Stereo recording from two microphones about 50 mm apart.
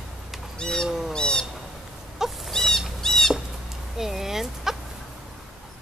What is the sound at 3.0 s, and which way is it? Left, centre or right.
Squawk, centre.